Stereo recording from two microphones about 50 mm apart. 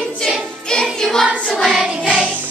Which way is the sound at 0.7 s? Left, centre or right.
Centre.